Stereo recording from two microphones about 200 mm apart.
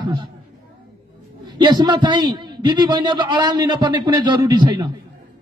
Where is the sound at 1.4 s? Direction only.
20° right (ahead or behind).